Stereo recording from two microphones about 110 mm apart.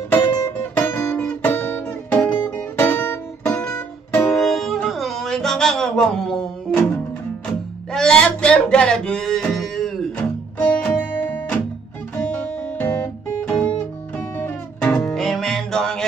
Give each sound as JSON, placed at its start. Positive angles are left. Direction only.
{"t": 0.7, "sound": "guitar", "side_deg": 15}
{"t": 4.3, "sound": "music", "side_deg": 0}
{"t": 4.8, "sound": "a sound", "side_deg": 0}
{"t": 7.9, "sound": "music", "side_deg": 5}
{"t": 12.2, "sound": "guitar", "side_deg": 15}
{"t": 15.1, "sound": "music", "side_deg": 0}